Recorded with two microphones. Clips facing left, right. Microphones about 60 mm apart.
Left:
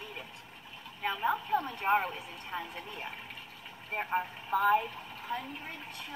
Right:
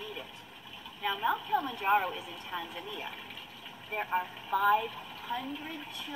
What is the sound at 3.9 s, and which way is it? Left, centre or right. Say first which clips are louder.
Speech: even; left.